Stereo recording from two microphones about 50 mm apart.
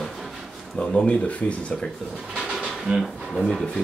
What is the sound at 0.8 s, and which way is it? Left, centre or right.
Speech, left.